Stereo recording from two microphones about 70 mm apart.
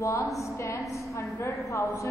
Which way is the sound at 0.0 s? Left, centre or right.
Left.